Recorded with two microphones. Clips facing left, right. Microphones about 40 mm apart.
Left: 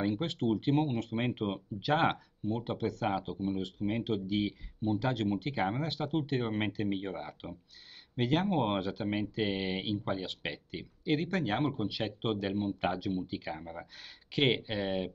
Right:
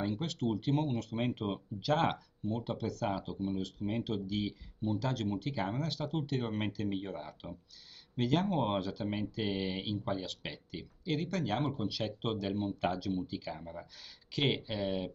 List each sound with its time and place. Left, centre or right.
0.0 s speech: left